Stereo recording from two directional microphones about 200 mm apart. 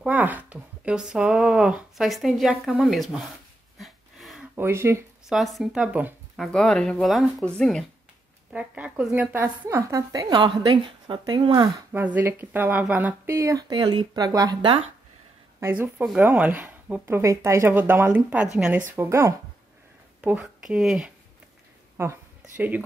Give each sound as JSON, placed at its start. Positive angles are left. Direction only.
{"t": 0.0, "sound": "speech", "side_deg": -10}
{"t": 3.7, "sound": "a sound", "side_deg": 0}
{"t": 4.6, "sound": "speech", "side_deg": -15}
{"t": 5.3, "sound": "speech", "side_deg": 0}
{"t": 8.5, "sound": "speech", "side_deg": -5}
{"t": 11.9, "sound": "speech", "side_deg": -10}
{"t": 15.6, "sound": "speech", "side_deg": -10}
{"t": 21.9, "sound": "a sound", "side_deg": -10}